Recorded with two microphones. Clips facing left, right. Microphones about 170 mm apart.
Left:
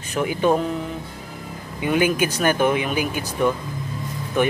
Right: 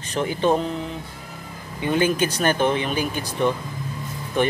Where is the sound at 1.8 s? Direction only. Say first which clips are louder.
Left 1 dB; 10° left (ahead or behind).